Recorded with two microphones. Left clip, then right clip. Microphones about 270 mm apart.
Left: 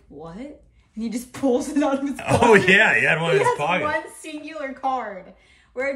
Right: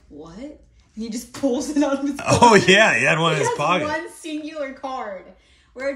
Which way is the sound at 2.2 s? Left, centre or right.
Centre.